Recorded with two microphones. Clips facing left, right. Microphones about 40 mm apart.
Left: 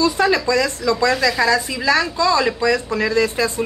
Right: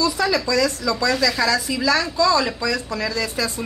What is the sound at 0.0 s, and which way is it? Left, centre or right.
Speech, left.